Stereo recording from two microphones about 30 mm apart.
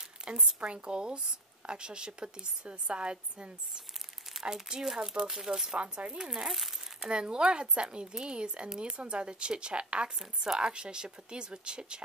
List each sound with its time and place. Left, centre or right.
0.2 s a sound: right
0.6 s a woman's voice: right
4.4 s speech: centre
5.8 s a woman's voice: right
6.1 s a woman's voice: right